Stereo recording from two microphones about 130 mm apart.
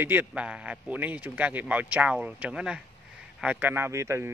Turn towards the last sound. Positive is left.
turn(degrees=-20)  # may be behind; listen again after turning